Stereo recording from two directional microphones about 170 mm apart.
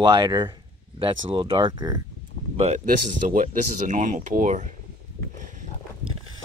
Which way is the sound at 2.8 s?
50° right (ahead or behind).